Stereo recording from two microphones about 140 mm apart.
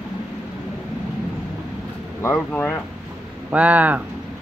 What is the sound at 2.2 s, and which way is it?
Speech, 15° left (ahead or behind).